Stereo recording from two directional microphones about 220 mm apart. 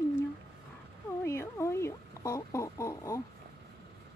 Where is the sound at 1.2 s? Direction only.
10° left (ahead or behind).